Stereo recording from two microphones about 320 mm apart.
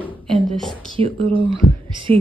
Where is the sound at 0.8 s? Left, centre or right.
Centre.